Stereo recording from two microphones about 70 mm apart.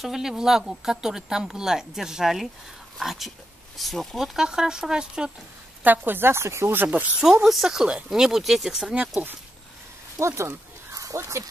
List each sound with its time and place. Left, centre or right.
0.0 s speech: centre
5.9 s a woman's voice: right
7.2 s speech: centre
7.4 s speech: centre
9.1 s speech: right
10.1 s speech: right
10.9 s crow: right